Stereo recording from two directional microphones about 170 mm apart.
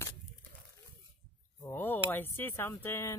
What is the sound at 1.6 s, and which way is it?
Speech, 15° left (ahead or behind).